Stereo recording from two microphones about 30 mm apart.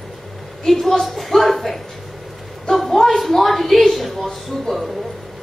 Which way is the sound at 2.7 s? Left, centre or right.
Centre.